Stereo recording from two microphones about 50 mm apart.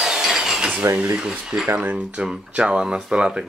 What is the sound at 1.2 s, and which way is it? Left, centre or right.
Speech, centre.